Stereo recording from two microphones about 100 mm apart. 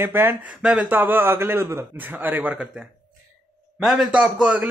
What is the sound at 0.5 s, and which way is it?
Speech, 10° right (ahead or behind).